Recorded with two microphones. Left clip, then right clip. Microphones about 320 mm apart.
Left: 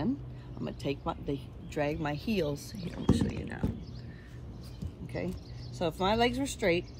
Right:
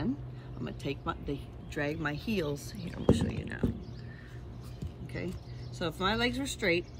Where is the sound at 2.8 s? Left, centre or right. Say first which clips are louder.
Right 5 dB; right.